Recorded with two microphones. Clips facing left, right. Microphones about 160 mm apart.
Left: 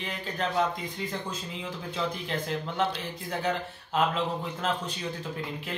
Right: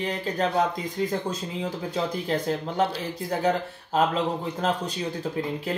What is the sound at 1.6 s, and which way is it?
Speech, 40° right (ahead or behind).